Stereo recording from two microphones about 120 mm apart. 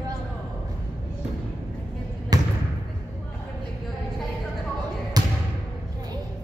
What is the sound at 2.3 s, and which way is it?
Basketball bounce, 35° right (ahead or behind).